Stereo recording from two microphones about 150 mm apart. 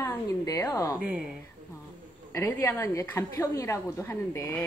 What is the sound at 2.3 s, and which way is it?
A woman's voice, 15° left (ahead or behind).